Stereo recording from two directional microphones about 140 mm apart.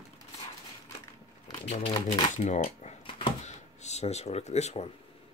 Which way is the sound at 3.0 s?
40° left (ahead or behind).